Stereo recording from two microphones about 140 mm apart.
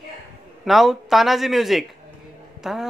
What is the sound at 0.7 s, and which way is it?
Speech, centre (ahead or behind).